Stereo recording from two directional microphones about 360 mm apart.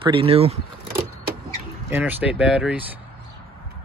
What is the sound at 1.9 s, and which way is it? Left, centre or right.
Speech, centre.